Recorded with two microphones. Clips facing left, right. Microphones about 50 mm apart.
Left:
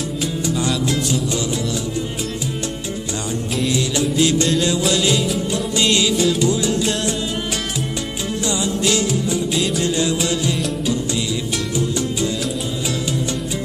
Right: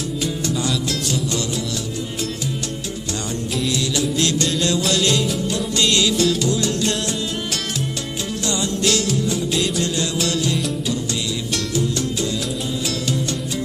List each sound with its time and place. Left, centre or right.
0.6 s music: centre
4.2 s music: centre
8.5 s music: centre
9.8 s music: centre